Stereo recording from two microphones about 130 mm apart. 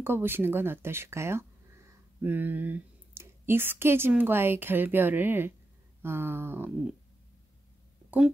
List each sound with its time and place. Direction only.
0.0 s speech: 15° right (ahead or behind)